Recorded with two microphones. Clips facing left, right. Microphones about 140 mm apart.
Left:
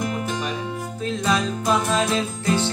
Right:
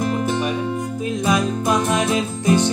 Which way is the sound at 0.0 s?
35° right (ahead or behind).